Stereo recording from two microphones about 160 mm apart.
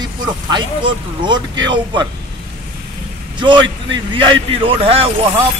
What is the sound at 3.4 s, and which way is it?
A man's voice, 30° right (ahead or behind).